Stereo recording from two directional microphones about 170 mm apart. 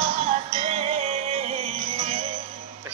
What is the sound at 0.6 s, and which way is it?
Music, 40° right (ahead or behind).